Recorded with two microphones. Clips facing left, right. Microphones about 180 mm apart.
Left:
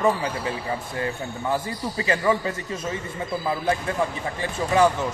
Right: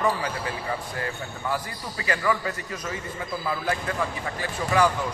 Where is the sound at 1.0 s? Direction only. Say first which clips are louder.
Left 4 dB; 25° left (ahead or behind).